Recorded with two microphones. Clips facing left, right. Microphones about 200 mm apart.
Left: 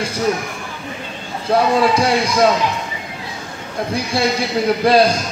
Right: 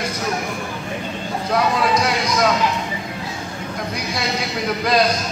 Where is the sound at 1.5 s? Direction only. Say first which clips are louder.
Left 5 dB; 30° left (ahead or behind).